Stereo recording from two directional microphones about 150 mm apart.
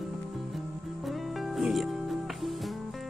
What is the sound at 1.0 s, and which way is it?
Speech, centre (ahead or behind).